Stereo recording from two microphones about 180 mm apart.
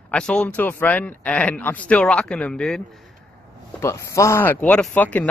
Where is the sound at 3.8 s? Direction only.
15° left (ahead or behind).